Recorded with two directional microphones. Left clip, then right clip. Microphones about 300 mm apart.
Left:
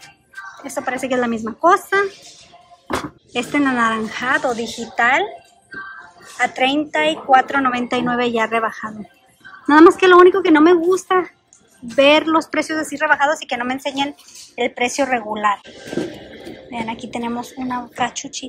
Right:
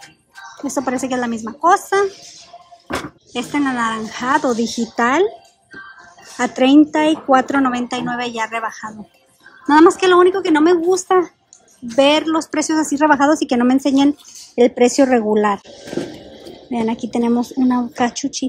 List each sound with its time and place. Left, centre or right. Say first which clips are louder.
0.7 s a woman's voice: right 1 dB; centre
3.3 s a woman's voice: left 2 dB; centre
16.7 s a woman's voice: right 5 dB; centre